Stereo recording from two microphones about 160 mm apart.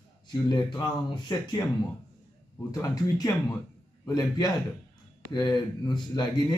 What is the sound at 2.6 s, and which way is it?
A man's voice, 20° left (ahead or behind).